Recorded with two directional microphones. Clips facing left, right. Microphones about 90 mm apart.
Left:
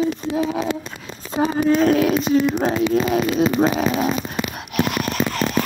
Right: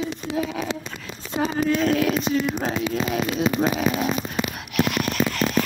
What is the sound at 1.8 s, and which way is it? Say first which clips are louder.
Speech: left 5 dB; 35° left (ahead or behind).